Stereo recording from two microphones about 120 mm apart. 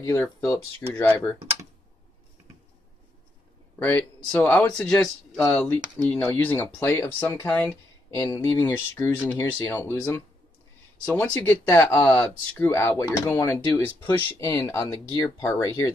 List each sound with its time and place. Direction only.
0.0 s speech: 20° left (ahead or behind)
3.8 s speech: 15° left (ahead or behind)
8.1 s speech: 25° left (ahead or behind)
11.3 s speech: 20° left (ahead or behind)